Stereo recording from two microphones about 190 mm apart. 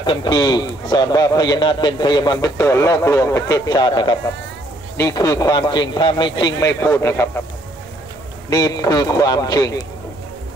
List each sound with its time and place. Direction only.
0.0 s a man's voice: 25° left (ahead or behind)
8.5 s a man's voice: 20° left (ahead or behind)